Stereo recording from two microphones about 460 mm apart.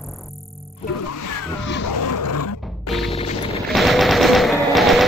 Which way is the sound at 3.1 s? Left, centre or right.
Centre.